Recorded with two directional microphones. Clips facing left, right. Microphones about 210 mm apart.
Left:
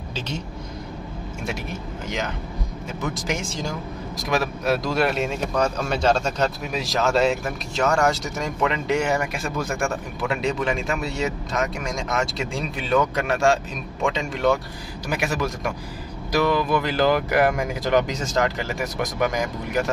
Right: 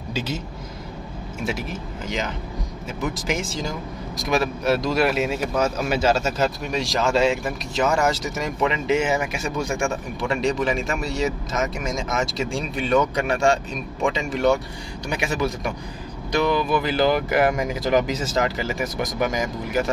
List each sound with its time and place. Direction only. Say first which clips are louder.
1.4 s speech: right 3 dB; centre (ahead or behind)